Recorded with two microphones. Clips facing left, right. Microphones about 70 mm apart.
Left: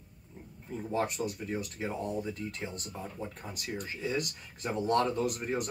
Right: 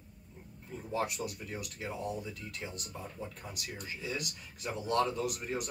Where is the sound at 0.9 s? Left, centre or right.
Left.